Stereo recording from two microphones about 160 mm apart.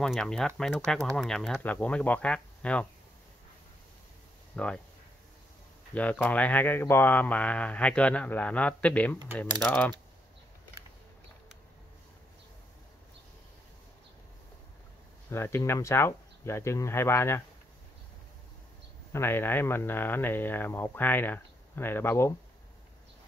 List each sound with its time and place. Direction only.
0.0 s speech: 5° left (ahead or behind)
4.6 s speech: 5° left (ahead or behind)
5.9 s speech: 10° left (ahead or behind)
15.2 s speech: 15° left (ahead or behind)
19.1 s speech: 15° left (ahead or behind)